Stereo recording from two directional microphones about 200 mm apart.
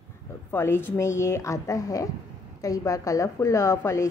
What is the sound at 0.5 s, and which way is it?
A woman's voice, 10° left (ahead or behind).